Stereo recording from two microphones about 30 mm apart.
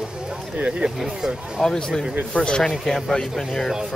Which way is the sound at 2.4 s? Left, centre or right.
Left.